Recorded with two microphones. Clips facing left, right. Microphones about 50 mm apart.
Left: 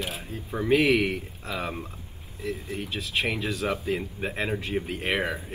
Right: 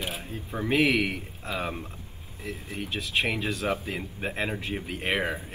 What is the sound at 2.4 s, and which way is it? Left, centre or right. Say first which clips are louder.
Speech: left 3 dB; right.